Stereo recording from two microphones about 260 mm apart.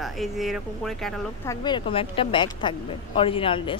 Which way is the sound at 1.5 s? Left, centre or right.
Centre.